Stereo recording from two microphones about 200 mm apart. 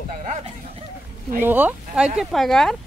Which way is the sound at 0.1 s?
35° right (ahead or behind).